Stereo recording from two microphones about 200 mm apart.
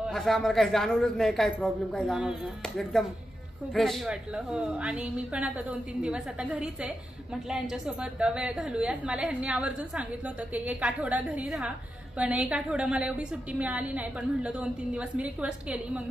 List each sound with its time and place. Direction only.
0.1 s a woman's voice: centre (ahead or behind)